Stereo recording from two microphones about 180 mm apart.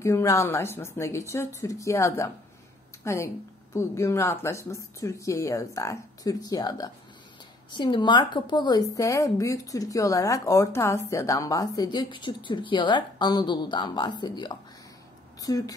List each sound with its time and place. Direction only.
0.0 s speech: 15° left (ahead or behind)